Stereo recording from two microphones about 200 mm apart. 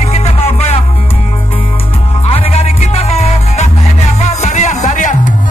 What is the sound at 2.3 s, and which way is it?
Music, 30° left (ahead or behind).